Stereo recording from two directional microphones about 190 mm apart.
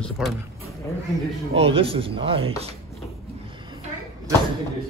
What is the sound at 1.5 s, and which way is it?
Speech, 30° right (ahead or behind).